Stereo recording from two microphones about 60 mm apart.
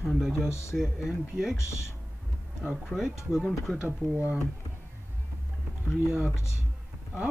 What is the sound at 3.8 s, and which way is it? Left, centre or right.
Speech, right.